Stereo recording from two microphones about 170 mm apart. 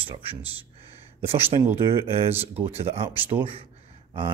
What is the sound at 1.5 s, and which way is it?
Speech, 30° right (ahead or behind).